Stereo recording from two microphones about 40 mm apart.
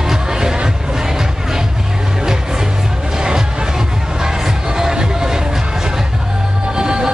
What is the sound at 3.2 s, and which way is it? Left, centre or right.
Music, centre.